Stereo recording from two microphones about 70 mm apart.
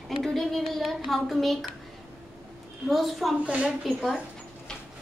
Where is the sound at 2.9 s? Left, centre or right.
Centre.